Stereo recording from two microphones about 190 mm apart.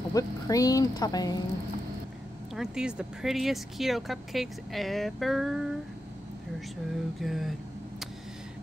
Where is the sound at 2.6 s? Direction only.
5° right (ahead or behind).